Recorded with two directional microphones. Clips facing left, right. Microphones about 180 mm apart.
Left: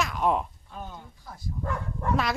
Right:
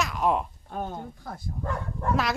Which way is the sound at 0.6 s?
50° right (ahead or behind).